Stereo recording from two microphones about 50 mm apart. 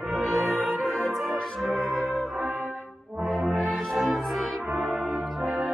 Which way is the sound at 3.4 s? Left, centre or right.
Centre.